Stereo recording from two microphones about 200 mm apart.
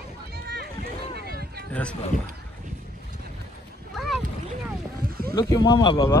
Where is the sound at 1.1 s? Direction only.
50° right (ahead or behind).